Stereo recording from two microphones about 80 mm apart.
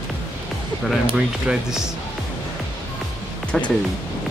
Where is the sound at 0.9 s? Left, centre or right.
Centre.